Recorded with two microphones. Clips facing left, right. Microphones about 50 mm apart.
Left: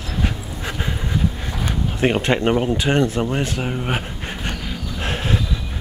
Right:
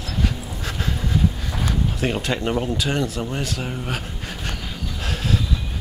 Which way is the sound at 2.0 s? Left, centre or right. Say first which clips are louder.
Left 8 dB; left.